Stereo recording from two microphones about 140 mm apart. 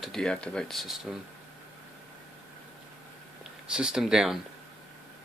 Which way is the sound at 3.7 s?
5° right (ahead or behind).